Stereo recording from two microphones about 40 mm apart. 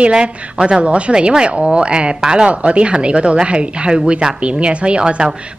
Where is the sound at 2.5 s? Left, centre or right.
Right.